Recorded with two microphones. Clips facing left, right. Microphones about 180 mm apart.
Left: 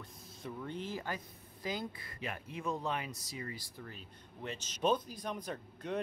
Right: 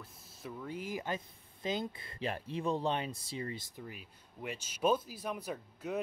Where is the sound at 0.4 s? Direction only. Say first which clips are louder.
Even; 5° right (ahead or behind); by 3.6 s 30° right (ahead or behind).